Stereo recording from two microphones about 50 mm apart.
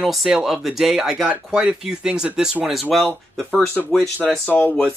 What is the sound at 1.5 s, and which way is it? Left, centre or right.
Speech, centre.